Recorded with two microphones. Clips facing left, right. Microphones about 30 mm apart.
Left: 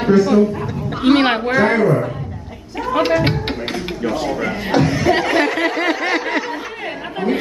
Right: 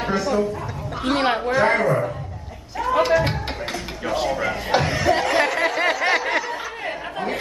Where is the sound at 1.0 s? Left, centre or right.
Left.